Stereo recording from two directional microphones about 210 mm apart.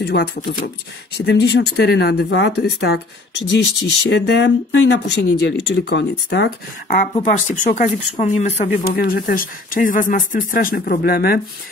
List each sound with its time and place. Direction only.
0.0 s speech: 50° left (ahead or behind)
1.1 s speech: 50° left (ahead or behind)
6.9 s speech: 35° left (ahead or behind)